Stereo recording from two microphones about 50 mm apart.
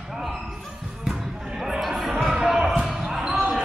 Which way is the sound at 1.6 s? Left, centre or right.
Centre.